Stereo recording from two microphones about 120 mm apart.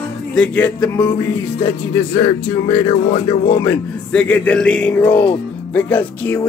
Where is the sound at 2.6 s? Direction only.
55° left (ahead or behind).